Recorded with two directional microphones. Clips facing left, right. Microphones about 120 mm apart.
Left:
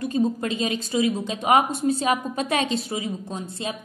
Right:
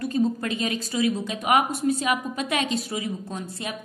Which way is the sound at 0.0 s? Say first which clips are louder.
Left 1 dB; 25° left (ahead or behind).